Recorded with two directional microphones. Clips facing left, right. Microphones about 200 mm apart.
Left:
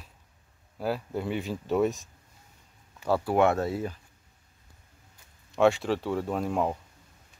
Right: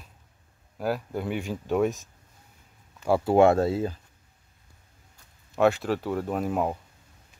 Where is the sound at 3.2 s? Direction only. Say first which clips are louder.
Right 6 dB; 30° right (ahead or behind).